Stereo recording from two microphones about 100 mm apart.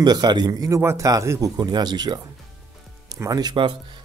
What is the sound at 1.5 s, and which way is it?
A man's voice, 45° right (ahead or behind).